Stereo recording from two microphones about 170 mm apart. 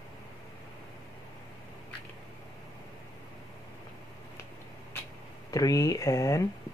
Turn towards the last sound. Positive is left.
turn(degrees=20)  # may be behind; listen again after turning